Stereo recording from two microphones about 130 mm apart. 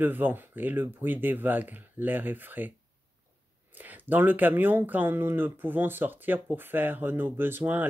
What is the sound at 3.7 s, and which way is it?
Speech, 15° right (ahead or behind).